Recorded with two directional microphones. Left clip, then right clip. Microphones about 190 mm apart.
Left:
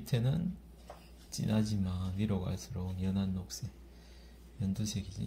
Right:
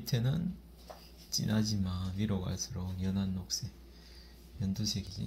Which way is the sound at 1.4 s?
10° left (ahead or behind).